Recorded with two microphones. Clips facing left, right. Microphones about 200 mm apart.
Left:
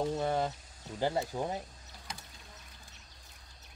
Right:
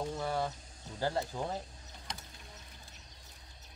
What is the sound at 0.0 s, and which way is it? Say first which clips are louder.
Cricket: left 4 dB; 20° left (ahead or behind).